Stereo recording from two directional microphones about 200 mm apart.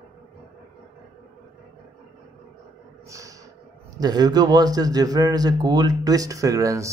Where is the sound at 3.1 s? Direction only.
15° right (ahead or behind).